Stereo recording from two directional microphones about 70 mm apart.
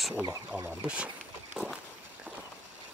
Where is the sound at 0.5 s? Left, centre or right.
Right.